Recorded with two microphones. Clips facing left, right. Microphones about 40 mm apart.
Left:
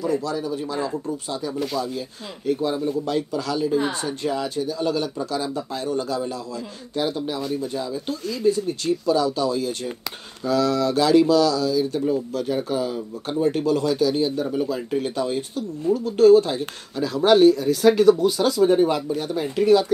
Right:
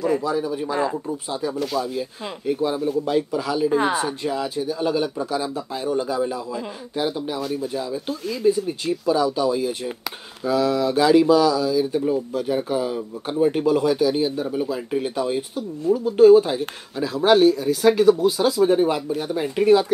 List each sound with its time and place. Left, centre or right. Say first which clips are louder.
0.1 s speech: right 2 dB; right
19.4 s speech: right 1 dB; centre